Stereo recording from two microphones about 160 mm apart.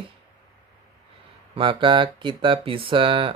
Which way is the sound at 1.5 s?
30° right (ahead or behind).